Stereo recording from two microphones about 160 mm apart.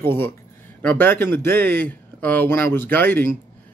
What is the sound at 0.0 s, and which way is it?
Speech, 15° left (ahead or behind).